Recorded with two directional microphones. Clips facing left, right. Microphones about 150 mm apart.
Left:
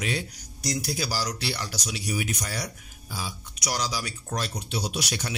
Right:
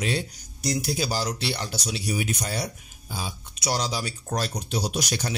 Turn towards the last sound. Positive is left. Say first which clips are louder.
# right 3 dB
turn(degrees=-40)  # may be behind; listen again after turning